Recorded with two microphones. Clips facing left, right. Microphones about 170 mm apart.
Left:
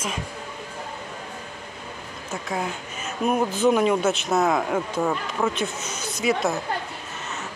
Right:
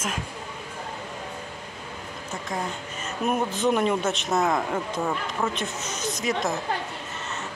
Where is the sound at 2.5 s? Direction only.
5° left (ahead or behind).